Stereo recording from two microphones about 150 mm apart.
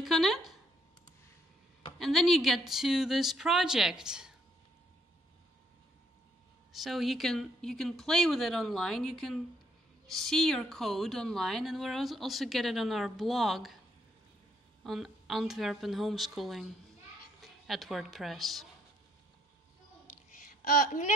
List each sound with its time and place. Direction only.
0.0 s speech: centre (ahead or behind)
2.0 s a woman's voice: centre (ahead or behind)
6.7 s a woman's voice: centre (ahead or behind)
14.8 s a woman's voice: centre (ahead or behind)
20.6 s a child's voice: 60° left (ahead or behind)